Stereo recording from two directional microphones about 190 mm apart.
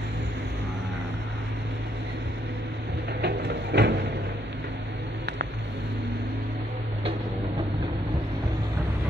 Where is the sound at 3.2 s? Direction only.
65° right (ahead or behind).